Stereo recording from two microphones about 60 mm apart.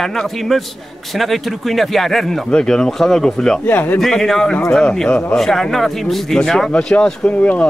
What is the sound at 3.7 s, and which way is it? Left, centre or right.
Speech, left.